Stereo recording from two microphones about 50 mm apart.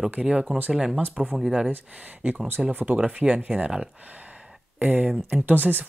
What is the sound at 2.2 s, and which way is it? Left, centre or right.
Speech, right.